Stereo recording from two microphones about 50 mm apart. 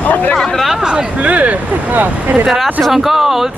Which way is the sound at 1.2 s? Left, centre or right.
Right.